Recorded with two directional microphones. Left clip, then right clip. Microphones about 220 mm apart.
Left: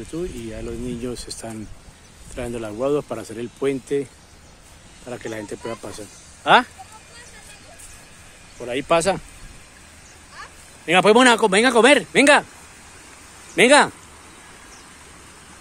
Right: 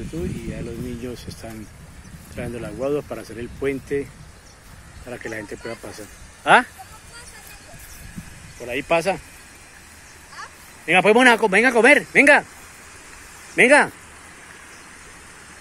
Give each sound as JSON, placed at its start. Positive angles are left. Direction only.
{"t": 1.4, "sound": "speech", "side_deg": 20}
{"t": 8.5, "sound": "speech", "side_deg": 15}
{"t": 10.3, "sound": "a sound", "side_deg": 15}
{"t": 11.4, "sound": "speech", "side_deg": 10}
{"t": 13.6, "sound": "speech", "side_deg": 10}